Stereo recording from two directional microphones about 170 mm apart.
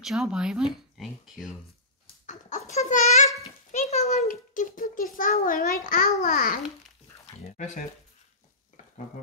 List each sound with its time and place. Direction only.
0.0 s speech: 5° right (ahead or behind)
2.2 s a sound: 45° left (ahead or behind)
2.9 s a child's voice: 45° left (ahead or behind)